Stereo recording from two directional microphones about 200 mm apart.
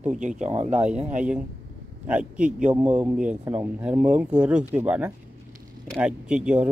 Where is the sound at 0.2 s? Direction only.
40° right (ahead or behind).